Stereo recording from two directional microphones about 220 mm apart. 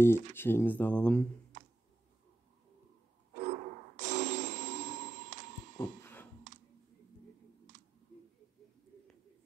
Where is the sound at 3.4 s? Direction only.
35° right (ahead or behind).